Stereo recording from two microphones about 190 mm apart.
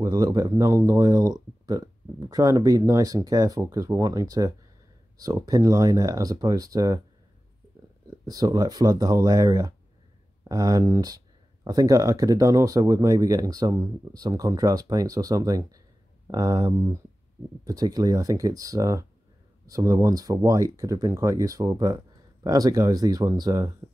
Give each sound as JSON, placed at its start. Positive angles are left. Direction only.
{"t": 0.0, "sound": "speech", "side_deg": -20}
{"t": 8.3, "sound": "speech", "side_deg": -20}